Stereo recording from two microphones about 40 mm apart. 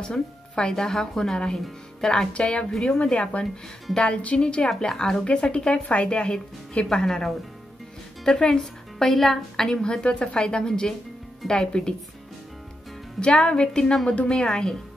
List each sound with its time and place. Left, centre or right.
0.6 s a woman's voice: centre
2.3 s a woman's voice: left
8.3 s a woman's voice: centre
9.7 s a woman's voice: left
13.2 s speech: left